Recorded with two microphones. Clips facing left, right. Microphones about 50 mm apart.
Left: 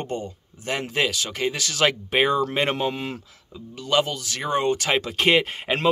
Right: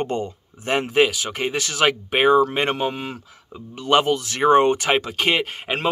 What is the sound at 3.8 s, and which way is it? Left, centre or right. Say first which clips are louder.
Speech: right 5 dB; right.